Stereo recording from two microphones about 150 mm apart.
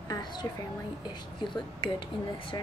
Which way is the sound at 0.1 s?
30° left (ahead or behind).